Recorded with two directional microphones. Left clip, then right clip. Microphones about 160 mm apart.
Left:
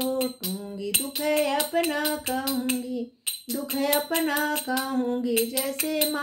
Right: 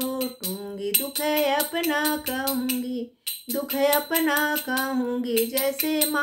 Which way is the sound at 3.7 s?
25° right (ahead or behind).